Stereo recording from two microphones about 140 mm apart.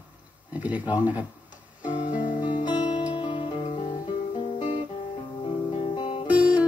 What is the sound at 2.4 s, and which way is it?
Music, 35° left (ahead or behind).